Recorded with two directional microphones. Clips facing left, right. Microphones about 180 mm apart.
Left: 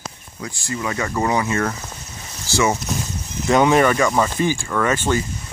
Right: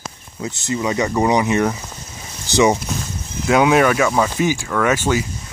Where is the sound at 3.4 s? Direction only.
5° right (ahead or behind).